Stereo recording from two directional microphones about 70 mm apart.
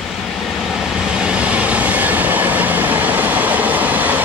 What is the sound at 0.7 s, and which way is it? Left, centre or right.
Vehicle, centre.